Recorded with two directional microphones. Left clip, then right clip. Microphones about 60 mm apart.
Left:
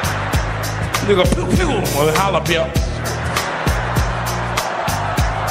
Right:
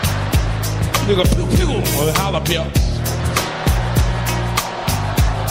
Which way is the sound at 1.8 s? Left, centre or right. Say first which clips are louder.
Left 3 dB; right.